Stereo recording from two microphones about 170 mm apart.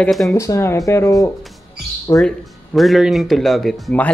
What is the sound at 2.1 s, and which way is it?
Speech, centre (ahead or behind).